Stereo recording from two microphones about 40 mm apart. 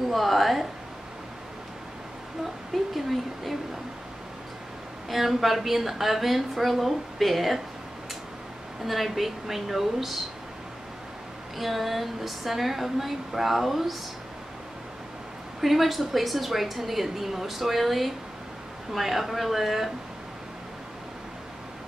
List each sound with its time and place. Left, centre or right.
0.1 s a sound: centre
2.9 s speech: centre
5.1 s a woman's voice: centre
8.8 s a woman's voice: centre
11.5 s a woman's voice: centre
15.6 s a woman's voice: centre